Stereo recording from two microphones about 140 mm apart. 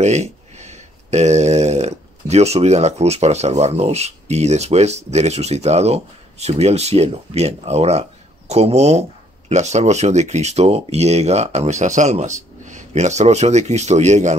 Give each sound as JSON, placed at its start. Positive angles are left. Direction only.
{"t": 0.0, "sound": "speech", "side_deg": -55}